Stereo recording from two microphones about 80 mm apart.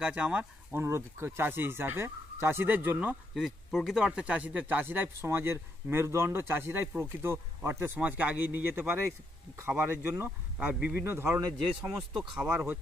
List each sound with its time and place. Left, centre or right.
0.0 s speech: centre
0.7 s speech: right
3.3 s speech: centre
11.0 s speech: right